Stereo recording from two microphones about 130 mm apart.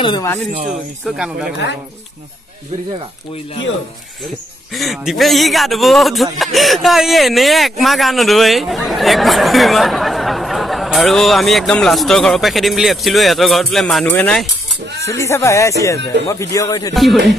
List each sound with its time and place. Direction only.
1.0 s speech: 5° right (ahead or behind)
4.7 s speech: centre (ahead or behind)
15.0 s speech: 20° left (ahead or behind)
16.9 s speech: centre (ahead or behind)